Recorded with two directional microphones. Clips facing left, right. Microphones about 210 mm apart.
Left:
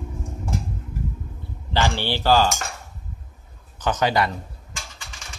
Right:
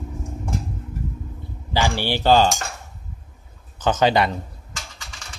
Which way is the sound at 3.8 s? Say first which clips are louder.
Right 3 dB; 25° right (ahead or behind).